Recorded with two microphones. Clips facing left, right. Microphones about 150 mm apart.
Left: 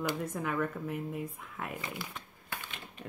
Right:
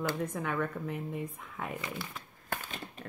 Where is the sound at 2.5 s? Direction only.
40° right (ahead or behind).